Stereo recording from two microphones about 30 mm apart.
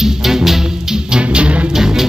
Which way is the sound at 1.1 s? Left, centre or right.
Right.